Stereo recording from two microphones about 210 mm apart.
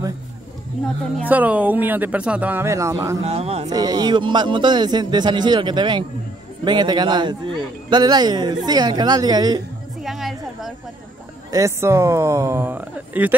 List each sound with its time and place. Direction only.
1.2 s speech: 5° right (ahead or behind)
3.3 s a man's voice: 30° right (ahead or behind)
3.7 s a man's voice: 20° right (ahead or behind)
10.0 s music: centre (ahead or behind)
11.5 s speech: 15° right (ahead or behind)